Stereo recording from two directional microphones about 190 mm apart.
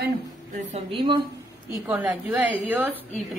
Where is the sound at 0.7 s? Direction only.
25° right (ahead or behind).